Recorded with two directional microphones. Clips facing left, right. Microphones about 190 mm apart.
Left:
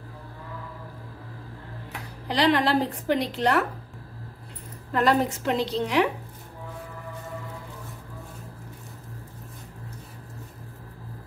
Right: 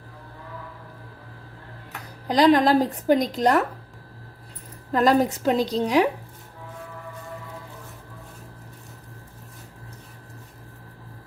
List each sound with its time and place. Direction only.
2.2 s a woman's voice: 45° right (ahead or behind)
4.9 s a woman's voice: 40° right (ahead or behind)